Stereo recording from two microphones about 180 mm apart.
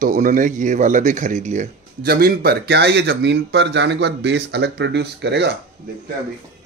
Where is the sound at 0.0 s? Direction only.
45° right (ahead or behind).